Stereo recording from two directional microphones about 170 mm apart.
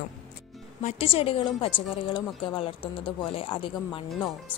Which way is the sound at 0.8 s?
40° left (ahead or behind).